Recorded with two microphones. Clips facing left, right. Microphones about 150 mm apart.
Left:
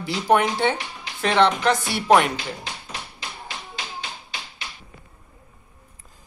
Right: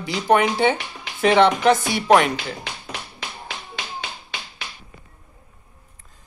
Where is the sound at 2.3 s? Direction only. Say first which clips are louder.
Right 2 dB; 65° right (ahead or behind).